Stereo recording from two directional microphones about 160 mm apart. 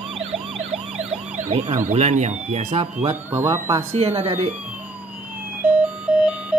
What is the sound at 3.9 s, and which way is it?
Speech, 40° right (ahead or behind).